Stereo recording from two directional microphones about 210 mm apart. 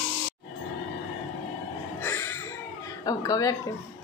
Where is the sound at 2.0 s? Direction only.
10° left (ahead or behind).